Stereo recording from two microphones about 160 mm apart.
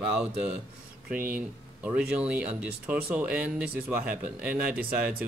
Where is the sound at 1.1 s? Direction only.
60° right (ahead or behind).